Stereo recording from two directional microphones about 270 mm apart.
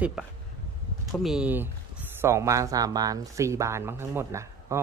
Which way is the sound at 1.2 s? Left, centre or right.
Centre.